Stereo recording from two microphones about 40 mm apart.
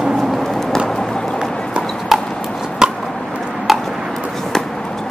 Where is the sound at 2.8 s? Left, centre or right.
Centre.